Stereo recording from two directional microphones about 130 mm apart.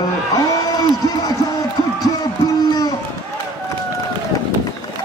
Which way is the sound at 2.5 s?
30° left (ahead or behind).